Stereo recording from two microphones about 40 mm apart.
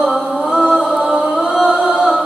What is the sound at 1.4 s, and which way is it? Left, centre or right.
Music, centre.